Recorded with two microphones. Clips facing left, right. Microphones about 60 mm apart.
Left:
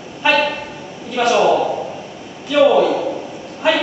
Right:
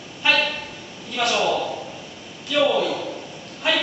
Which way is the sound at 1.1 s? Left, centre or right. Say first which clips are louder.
Left 8 dB; centre.